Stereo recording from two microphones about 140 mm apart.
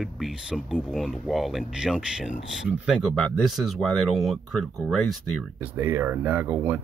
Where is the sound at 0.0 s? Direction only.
5° right (ahead or behind).